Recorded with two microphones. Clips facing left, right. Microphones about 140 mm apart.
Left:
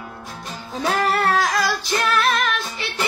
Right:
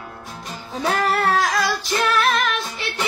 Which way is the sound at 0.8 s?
Centre (ahead or behind).